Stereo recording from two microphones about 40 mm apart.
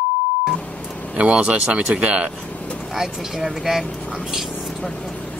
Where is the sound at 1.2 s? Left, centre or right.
Right.